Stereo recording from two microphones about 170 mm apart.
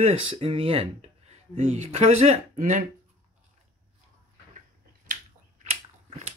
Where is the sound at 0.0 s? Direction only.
35° right (ahead or behind).